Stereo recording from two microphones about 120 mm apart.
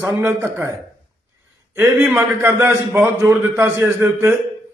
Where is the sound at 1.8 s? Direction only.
20° right (ahead or behind).